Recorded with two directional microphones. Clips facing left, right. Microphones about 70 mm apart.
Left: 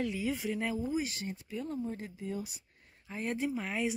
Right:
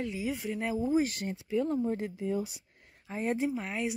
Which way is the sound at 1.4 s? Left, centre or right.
Right.